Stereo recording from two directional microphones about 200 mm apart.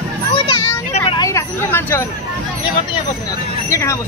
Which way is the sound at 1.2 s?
15° left (ahead or behind).